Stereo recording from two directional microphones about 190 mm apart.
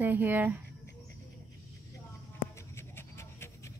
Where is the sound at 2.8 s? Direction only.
15° left (ahead or behind).